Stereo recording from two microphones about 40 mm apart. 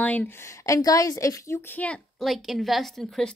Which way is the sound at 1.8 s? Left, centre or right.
Left.